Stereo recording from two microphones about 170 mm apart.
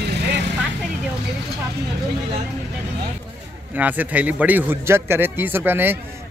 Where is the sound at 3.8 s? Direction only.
10° right (ahead or behind).